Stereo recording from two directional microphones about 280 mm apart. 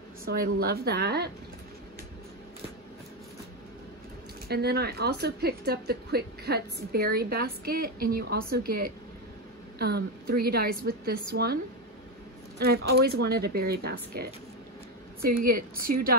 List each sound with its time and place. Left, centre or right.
0.2 s speech: right
4.5 s speech: right
15.9 s a woman's voice: right